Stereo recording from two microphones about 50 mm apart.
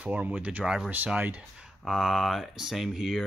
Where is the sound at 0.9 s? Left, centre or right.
Right.